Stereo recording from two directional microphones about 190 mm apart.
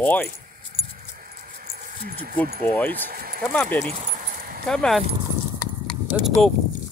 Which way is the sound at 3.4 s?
5° left (ahead or behind).